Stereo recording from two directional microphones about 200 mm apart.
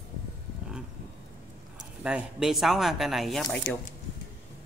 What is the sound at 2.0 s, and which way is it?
Speech, 5° right (ahead or behind).